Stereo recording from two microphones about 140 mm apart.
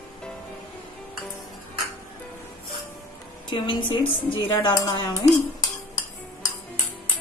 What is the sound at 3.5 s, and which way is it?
Speech, 35° left (ahead or behind).